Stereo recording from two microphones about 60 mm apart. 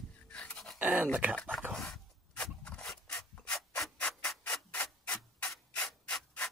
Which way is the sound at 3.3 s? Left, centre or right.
Left.